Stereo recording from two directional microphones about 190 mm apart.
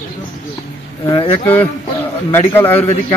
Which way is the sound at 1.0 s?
20° left (ahead or behind).